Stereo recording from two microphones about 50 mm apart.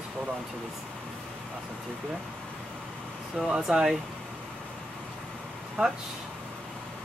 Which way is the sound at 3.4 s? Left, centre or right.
Centre.